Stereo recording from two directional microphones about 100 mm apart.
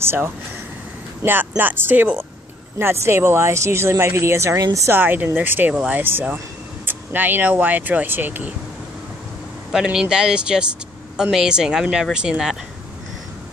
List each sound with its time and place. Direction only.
0.0 s speech: 20° right (ahead or behind)
9.7 s speech: 5° right (ahead or behind)